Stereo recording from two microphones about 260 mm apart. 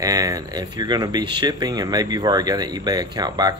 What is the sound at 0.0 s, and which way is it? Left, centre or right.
Speech, centre.